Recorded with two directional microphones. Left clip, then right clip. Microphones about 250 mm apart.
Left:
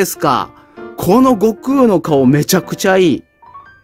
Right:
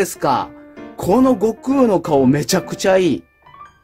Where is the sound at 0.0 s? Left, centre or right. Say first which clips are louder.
Left 3 dB; left.